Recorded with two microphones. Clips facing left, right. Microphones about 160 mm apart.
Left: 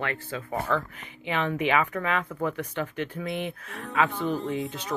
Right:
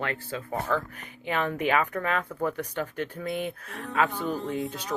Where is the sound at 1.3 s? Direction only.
45° right (ahead or behind).